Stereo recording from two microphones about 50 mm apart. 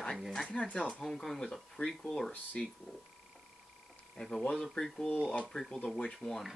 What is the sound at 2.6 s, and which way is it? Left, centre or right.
Speech, left.